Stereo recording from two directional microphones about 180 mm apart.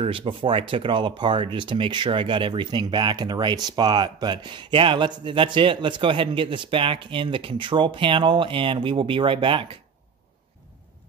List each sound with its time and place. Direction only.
0.0 s speech: 30° right (ahead or behind)